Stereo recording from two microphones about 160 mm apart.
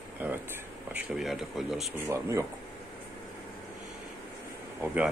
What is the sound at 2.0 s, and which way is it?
Speech, 15° right (ahead or behind).